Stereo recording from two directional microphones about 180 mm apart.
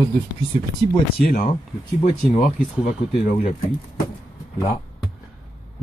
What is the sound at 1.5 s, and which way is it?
Speech, 40° left (ahead or behind).